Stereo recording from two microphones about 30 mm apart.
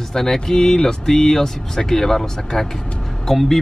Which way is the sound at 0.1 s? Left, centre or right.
Centre.